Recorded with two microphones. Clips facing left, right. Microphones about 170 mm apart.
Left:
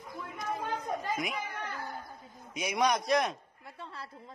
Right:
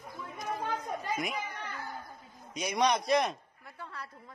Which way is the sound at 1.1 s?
Centre (ahead or behind).